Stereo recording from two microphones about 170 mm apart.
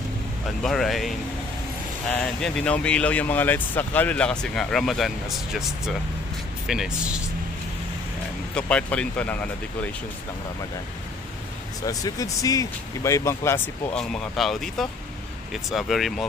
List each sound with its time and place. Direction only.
0.6 s speech: centre (ahead or behind)
8.5 s speech: 5° left (ahead or behind)
11.8 s speech: 20° left (ahead or behind); by 16.3 s centre (ahead or behind)